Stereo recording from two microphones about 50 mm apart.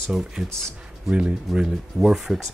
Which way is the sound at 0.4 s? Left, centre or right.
Centre.